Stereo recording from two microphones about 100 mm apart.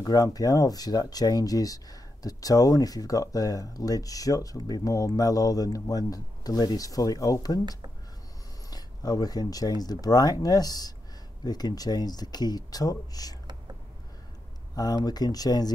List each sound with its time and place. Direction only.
0.0 s speech: 40° left (ahead or behind)
8.6 s speech: 40° left (ahead or behind)
14.8 s speech: 40° left (ahead or behind)